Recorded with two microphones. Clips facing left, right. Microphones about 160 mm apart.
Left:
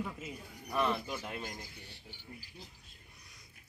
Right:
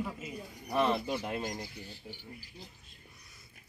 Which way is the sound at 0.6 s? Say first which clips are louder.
Right 4 dB; 25° right (ahead or behind).